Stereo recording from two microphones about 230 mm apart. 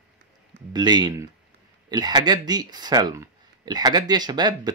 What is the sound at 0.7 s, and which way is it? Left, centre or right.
Speech, centre.